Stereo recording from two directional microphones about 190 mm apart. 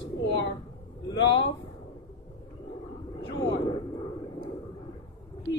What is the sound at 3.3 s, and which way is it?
Vehicle, 25° left (ahead or behind).